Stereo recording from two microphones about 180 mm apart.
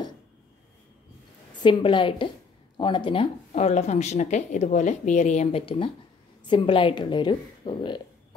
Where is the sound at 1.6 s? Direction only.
25° left (ahead or behind).